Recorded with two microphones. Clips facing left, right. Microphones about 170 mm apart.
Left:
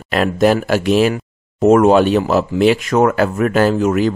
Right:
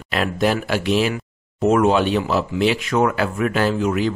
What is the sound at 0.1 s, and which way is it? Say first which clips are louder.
Speech: left 6 dB; 45° left (ahead or behind).